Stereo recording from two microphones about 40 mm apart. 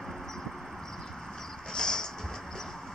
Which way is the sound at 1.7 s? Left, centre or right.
Centre.